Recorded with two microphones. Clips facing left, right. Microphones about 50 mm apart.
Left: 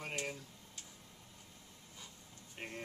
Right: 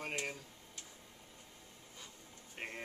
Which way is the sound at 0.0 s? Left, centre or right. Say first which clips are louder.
Right 1 dB; centre.